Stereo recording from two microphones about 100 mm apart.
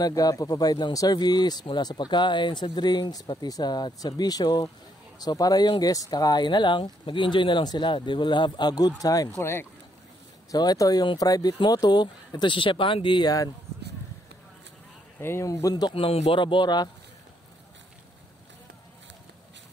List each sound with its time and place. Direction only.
0.0 s speech: 40° left (ahead or behind)
9.4 s speech: 25° left (ahead or behind)
10.5 s speech: 40° left (ahead or behind)
15.1 s speech: 25° left (ahead or behind)
15.9 s speech: 75° left (ahead or behind); by 16.9 s 45° left (ahead or behind)